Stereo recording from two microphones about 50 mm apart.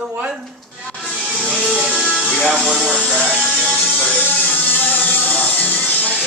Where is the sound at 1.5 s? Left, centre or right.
Left.